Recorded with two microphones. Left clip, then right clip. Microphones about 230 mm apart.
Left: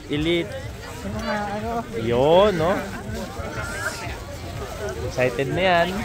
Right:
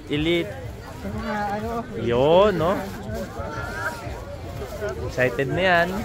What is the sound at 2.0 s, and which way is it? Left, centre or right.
Speech, centre.